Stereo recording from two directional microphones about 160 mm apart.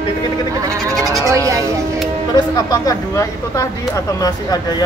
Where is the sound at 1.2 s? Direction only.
20° right (ahead or behind).